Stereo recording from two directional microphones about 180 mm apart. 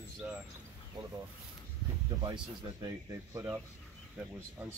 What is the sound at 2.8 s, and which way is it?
Speech, 15° right (ahead or behind).